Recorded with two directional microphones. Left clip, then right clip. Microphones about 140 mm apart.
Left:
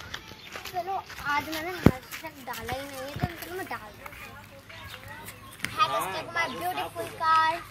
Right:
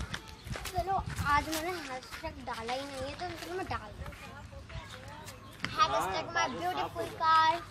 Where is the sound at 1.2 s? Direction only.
5° right (ahead or behind).